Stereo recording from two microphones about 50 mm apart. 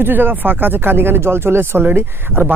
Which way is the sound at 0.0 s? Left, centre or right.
Right.